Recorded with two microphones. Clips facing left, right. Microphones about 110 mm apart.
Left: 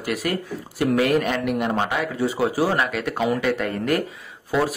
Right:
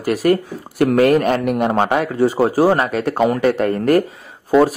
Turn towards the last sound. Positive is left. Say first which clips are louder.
# right 9 dB
turn(degrees=-45)  # may be behind; listen again after turning